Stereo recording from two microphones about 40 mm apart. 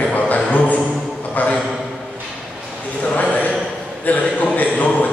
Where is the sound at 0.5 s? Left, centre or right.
Left.